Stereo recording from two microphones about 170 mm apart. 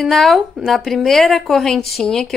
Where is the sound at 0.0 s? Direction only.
Centre (ahead or behind).